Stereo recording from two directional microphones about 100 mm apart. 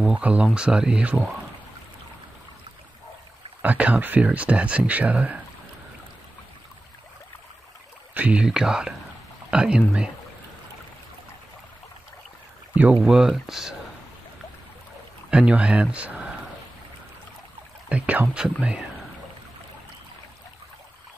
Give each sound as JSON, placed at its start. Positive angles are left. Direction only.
{"t": 0.0, "sound": "speech", "side_deg": -10}
{"t": 3.6, "sound": "speech", "side_deg": -15}
{"t": 8.1, "sound": "speech", "side_deg": -15}
{"t": 13.0, "sound": "speech", "side_deg": -5}
{"t": 15.3, "sound": "speech", "side_deg": -10}
{"t": 17.8, "sound": "speech", "side_deg": -15}